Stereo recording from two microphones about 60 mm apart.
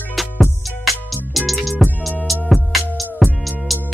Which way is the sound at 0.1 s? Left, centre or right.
Centre.